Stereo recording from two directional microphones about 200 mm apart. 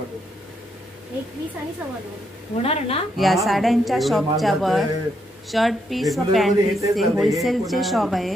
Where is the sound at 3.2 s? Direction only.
Centre (ahead or behind).